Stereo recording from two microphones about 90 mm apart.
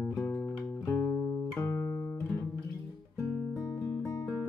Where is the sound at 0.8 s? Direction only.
20° left (ahead or behind).